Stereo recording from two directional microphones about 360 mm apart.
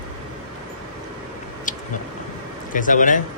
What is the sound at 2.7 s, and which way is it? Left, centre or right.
Speech, left.